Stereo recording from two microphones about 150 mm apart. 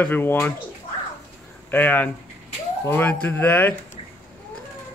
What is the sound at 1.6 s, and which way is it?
Speech, 10° left (ahead or behind).